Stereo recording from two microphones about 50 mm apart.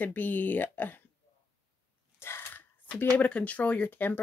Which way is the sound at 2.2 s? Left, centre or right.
Left.